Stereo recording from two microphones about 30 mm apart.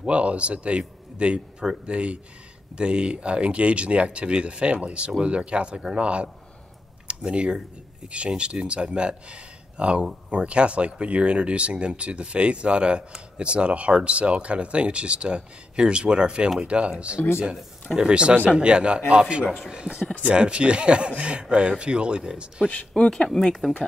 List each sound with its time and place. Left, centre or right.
0.0 s a man's voice: right
23.0 s speech: left